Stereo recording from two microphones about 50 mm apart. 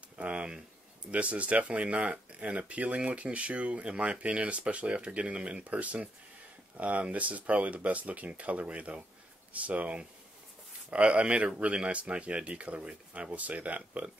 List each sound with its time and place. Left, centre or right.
0.2 s speech: right